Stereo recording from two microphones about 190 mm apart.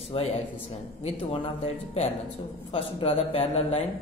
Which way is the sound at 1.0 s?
35° left (ahead or behind).